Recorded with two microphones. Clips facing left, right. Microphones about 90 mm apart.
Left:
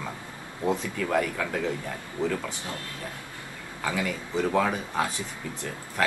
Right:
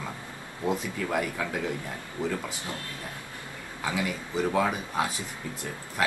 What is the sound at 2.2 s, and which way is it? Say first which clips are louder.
Speech: left 3 dB; 20° left (ahead or behind).